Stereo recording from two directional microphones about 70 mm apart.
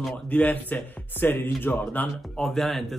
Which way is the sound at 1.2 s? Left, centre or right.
Left.